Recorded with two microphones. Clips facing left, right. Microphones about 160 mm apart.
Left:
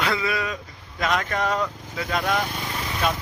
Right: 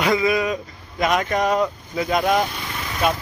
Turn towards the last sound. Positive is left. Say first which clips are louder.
# right 3 dB
turn(degrees=-10)  # may be behind; listen again after turning